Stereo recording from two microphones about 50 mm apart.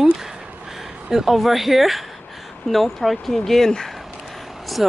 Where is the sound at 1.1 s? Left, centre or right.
Centre.